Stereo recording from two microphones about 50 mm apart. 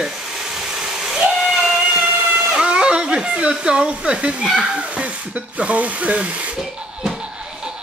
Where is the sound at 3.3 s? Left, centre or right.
Right.